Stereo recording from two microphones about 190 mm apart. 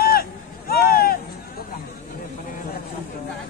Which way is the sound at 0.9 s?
50° left (ahead or behind).